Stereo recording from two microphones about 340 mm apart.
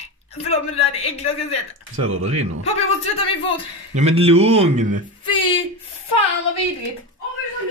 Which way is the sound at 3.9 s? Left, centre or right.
Centre.